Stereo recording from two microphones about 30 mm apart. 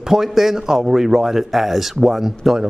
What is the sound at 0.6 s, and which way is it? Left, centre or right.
Speech, centre.